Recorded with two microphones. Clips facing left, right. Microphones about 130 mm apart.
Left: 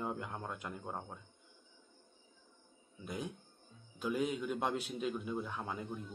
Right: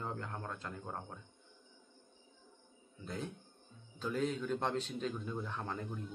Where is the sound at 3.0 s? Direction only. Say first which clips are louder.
Left 1 dB; 15° left (ahead or behind).